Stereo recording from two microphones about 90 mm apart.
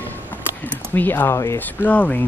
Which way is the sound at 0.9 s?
20° left (ahead or behind).